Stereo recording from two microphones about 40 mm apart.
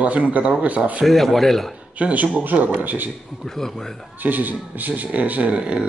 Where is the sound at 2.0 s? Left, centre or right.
Right.